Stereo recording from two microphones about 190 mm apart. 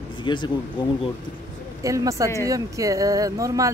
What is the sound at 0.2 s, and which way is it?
Speech, 25° left (ahead or behind).